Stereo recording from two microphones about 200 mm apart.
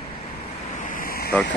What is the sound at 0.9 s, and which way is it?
Vehicle, 45° left (ahead or behind).